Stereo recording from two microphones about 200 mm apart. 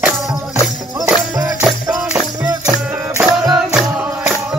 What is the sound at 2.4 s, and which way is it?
Music, 20° right (ahead or behind).